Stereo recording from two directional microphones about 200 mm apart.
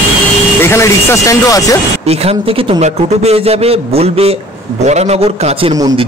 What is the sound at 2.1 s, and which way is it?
A man's voice, 30° right (ahead or behind).